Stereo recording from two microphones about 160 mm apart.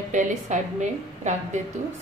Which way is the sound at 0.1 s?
50° right (ahead or behind).